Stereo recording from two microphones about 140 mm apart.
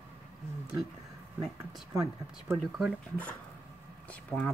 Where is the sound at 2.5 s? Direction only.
Centre (ahead or behind).